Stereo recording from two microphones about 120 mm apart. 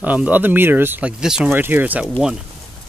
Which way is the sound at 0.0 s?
15° right (ahead or behind).